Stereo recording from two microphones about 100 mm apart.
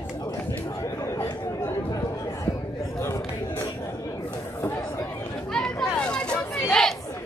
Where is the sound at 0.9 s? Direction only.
30° left (ahead or behind).